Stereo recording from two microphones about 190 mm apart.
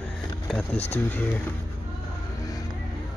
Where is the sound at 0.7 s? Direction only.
35° left (ahead or behind).